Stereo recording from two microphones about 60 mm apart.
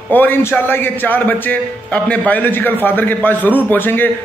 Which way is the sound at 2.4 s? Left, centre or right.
Left.